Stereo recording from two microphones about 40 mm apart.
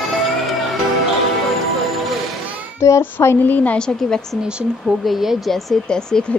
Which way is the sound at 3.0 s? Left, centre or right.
Left.